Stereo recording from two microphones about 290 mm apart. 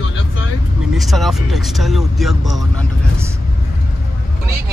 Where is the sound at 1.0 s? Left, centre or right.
Centre.